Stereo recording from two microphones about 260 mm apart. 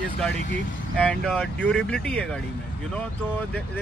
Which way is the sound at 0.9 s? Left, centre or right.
Centre.